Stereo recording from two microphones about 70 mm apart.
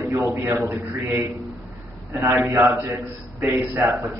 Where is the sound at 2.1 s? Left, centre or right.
Right.